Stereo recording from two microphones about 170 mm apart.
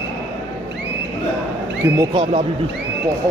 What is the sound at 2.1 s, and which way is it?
Speech, 30° right (ahead or behind).